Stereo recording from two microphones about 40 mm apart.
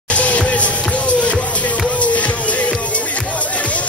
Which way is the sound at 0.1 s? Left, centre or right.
Left.